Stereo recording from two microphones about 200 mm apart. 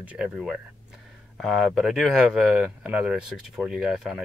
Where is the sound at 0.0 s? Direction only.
5° right (ahead or behind).